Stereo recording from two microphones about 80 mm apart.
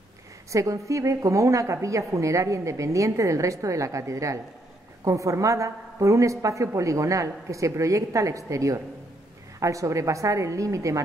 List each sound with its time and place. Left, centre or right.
0.5 s a woman's voice: right